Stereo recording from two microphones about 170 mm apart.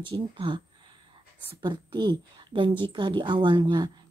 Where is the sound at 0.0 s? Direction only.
30° right (ahead or behind).